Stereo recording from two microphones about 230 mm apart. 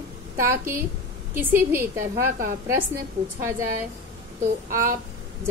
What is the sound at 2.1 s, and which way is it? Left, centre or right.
Speech, right.